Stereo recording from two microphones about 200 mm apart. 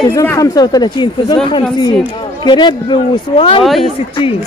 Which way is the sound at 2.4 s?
20° left (ahead or behind).